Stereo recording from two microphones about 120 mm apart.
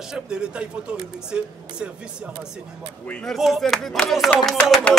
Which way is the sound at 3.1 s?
5° left (ahead or behind).